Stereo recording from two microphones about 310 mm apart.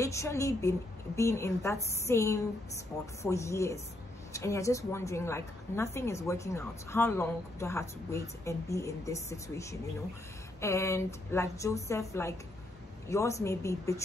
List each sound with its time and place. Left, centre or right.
0.0 s a woman's voice: centre